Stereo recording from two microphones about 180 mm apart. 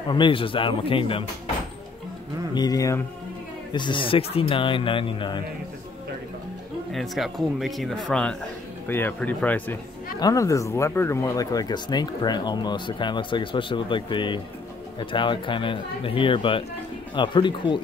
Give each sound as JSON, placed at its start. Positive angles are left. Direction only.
{"t": 0.1, "sound": "speech", "side_deg": 30}
{"t": 2.5, "sound": "speech", "side_deg": 20}
{"t": 6.9, "sound": "speech", "side_deg": 0}